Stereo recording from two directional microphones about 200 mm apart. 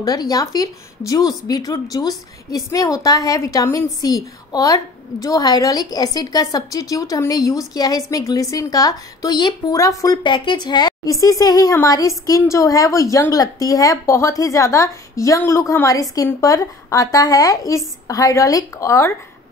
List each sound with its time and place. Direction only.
0.0 s a woman's voice: 20° left (ahead or behind)